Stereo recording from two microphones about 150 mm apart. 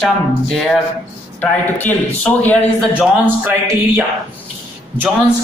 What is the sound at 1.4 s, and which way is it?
A man's voice, 10° left (ahead or behind).